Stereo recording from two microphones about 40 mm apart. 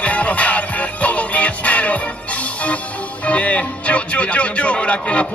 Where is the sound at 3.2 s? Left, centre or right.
Left.